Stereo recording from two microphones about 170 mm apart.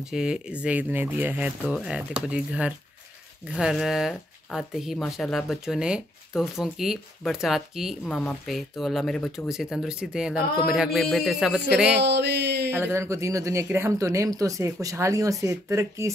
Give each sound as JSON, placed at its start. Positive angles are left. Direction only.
{"t": 0.0, "sound": "speech", "side_deg": -5}
{"t": 12.0, "sound": "a sound", "side_deg": -80}
{"t": 12.7, "sound": "speech", "side_deg": -15}